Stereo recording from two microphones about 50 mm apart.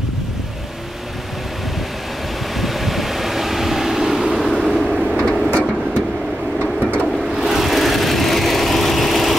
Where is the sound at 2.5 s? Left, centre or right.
Centre.